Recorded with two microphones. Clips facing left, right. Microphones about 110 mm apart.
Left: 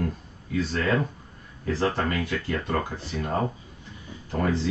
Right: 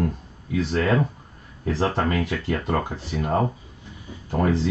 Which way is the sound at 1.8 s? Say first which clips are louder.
Right 3 dB; 25° right (ahead or behind).